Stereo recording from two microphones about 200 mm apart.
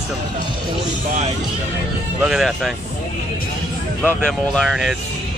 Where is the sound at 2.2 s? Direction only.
Centre (ahead or behind).